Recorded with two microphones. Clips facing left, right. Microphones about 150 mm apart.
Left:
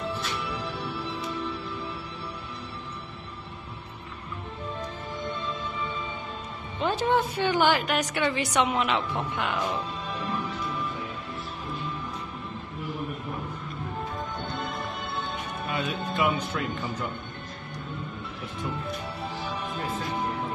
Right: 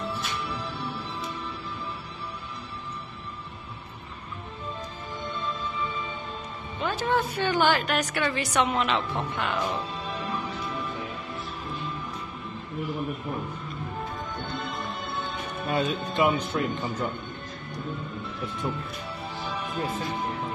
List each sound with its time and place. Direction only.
6.8 s a woman's voice: 25° left (ahead or behind)
15.7 s speech: 30° right (ahead or behind)